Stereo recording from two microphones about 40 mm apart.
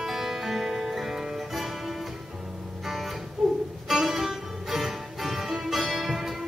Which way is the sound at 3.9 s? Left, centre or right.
Centre.